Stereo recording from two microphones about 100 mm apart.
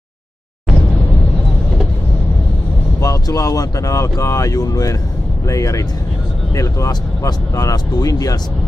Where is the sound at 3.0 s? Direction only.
35° left (ahead or behind).